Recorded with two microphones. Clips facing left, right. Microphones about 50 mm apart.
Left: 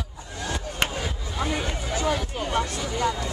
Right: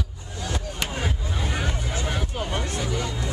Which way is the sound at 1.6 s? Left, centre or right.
Centre.